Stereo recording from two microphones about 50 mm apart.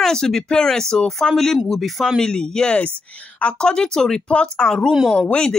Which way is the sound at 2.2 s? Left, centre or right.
Centre.